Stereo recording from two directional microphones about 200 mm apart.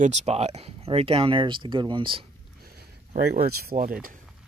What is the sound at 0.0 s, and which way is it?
Speech, 35° right (ahead or behind).